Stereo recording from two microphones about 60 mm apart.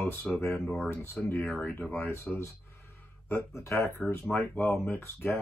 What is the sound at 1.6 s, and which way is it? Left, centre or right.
Speech, left.